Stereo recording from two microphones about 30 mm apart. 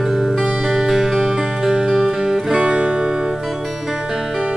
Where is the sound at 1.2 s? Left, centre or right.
Centre.